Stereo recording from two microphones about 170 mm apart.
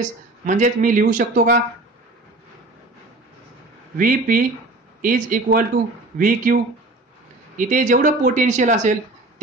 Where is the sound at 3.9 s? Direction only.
55° right (ahead or behind).